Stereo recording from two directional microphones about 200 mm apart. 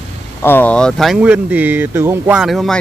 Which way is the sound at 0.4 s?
10° left (ahead or behind).